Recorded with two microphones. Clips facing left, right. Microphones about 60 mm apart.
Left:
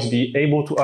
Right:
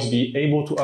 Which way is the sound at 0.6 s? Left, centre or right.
Left.